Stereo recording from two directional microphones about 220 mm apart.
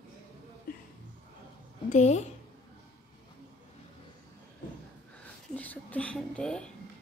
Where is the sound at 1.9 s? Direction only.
30° left (ahead or behind).